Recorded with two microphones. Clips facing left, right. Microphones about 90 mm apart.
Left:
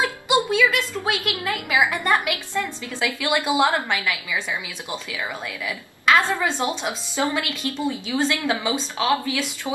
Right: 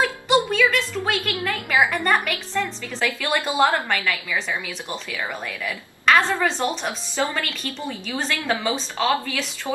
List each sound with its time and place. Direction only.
0.6 s a woman's voice: 15° left (ahead or behind)
5.7 s a woman's voice: 15° left (ahead or behind)